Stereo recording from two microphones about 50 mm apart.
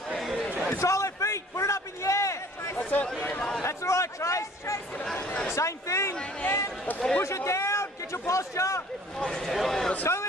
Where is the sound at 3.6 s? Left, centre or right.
Left.